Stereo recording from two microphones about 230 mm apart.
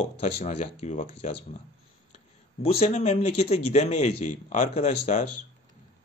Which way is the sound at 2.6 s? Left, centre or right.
Left.